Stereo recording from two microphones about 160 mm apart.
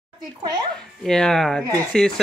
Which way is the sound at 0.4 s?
25° right (ahead or behind).